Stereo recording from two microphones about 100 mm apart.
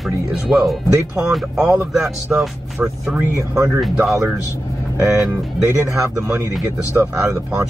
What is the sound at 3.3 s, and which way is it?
Speech, 30° right (ahead or behind).